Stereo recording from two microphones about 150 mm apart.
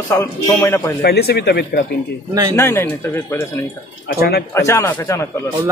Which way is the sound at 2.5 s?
15° left (ahead or behind).